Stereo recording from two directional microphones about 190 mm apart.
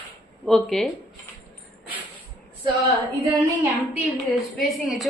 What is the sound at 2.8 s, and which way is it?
A woman's voice, 15° right (ahead or behind).